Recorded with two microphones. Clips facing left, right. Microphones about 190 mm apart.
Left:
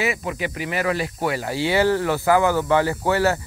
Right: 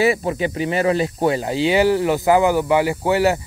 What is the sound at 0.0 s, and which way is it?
Speech, 35° right (ahead or behind).